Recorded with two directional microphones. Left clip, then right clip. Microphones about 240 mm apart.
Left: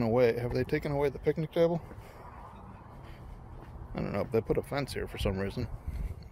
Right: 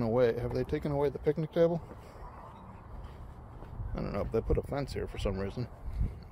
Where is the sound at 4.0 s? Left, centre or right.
Centre.